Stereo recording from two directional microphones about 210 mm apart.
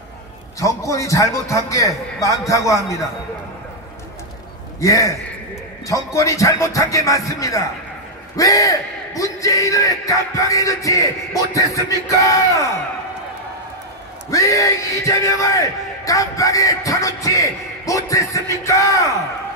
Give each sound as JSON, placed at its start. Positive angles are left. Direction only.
{"t": 0.6, "sound": "speech", "side_deg": 15}
{"t": 4.7, "sound": "speech", "side_deg": 15}
{"t": 14.3, "sound": "speech", "side_deg": 15}